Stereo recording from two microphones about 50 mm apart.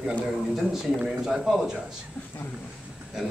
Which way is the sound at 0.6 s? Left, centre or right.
Centre.